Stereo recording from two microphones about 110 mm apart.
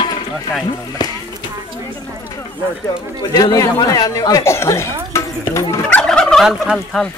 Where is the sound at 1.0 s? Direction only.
40° left (ahead or behind).